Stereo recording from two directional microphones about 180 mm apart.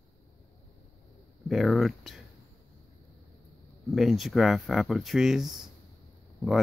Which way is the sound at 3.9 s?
Centre (ahead or behind).